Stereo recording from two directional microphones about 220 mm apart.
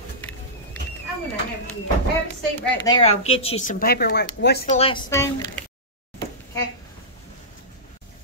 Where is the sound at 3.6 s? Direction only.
45° left (ahead or behind).